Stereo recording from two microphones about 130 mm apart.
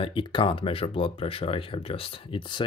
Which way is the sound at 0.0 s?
40° left (ahead or behind).